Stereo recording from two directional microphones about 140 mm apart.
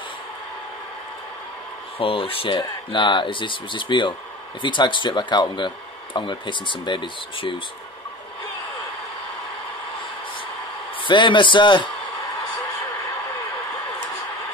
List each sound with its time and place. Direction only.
2.0 s speech: 40° left (ahead or behind)
11.0 s speech: 35° left (ahead or behind)